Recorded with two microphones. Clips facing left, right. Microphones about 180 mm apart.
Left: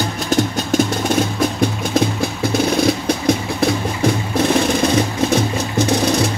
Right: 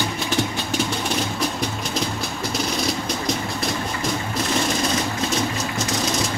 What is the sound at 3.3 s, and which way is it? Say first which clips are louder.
Music: left 11 dB; 60° left (ahead or behind).